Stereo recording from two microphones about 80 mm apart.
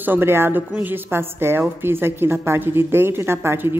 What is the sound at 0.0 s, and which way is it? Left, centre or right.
A woman's voice, right.